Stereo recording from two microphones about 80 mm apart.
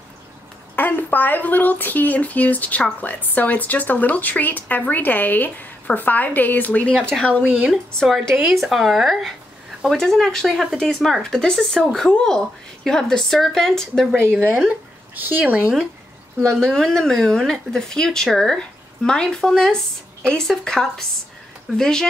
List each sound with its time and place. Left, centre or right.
0.7 s speech: left
7.4 s speech: centre
7.7 s a woman's voice: centre
15.1 s speech: right
16.5 s speech: centre